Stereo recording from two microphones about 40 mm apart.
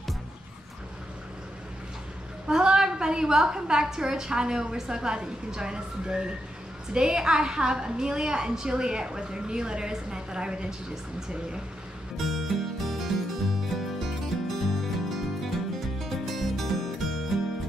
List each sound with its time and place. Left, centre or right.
2.4 s a woman's voice: centre
12.3 s music: centre